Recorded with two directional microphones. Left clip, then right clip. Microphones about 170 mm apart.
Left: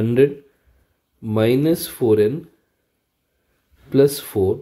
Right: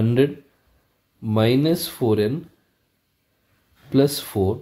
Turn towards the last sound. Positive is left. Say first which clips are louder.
# left 4 dB
turn(degrees=20)  # may be behind; listen again after turning